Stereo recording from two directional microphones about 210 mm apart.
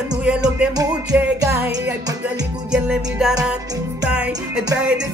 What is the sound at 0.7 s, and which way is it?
Music, 10° right (ahead or behind).